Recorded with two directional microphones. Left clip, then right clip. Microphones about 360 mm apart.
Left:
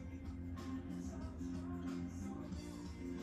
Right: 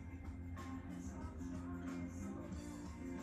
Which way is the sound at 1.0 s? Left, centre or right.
Centre.